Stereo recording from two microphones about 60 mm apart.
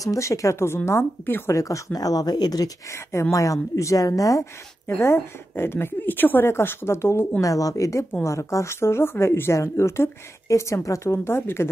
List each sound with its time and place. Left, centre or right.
0.0 s a woman's voice: left
0.8 s a woman's voice: left
1.5 s speech: left
2.9 s a woman's voice: left
3.7 s a woman's voice: left
4.8 s a woman's voice: left
7.4 s a woman's voice: left
8.2 s a woman's voice: left
11.2 s a woman's voice: left